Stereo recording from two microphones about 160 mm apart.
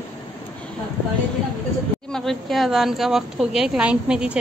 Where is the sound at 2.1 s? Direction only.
Centre (ahead or behind).